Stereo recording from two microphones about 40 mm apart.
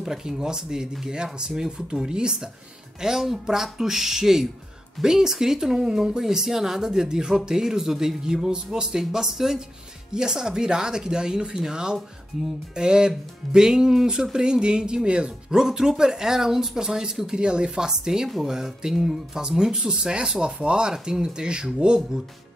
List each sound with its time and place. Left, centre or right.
0.0 s speech: centre
15.6 s speech: centre